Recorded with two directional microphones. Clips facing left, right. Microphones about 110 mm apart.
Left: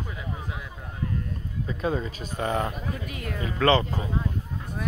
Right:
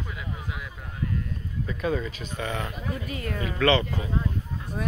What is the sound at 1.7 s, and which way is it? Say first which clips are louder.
Speech: even; 30° left (ahead or behind).